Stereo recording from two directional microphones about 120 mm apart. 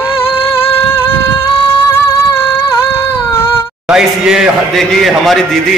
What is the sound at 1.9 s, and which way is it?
Music, 20° left (ahead or behind).